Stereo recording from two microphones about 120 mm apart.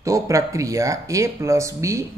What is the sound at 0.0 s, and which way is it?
Speech, 25° right (ahead or behind).